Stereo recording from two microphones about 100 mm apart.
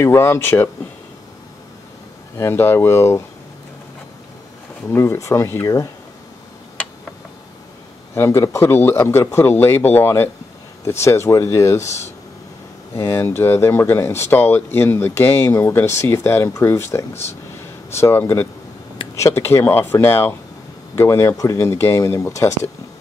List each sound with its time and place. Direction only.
0.0 s speech: 25° left (ahead or behind)
2.3 s speech: 25° left (ahead or behind)
4.8 s speech: 25° left (ahead or behind)
8.1 s speech: 25° left (ahead or behind)
12.9 s speech: 25° left (ahead or behind)